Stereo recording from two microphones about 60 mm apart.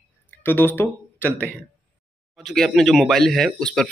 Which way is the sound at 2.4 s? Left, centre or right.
Centre.